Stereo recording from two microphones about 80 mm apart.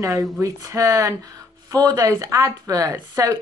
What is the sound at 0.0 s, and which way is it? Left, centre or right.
A woman's voice, right.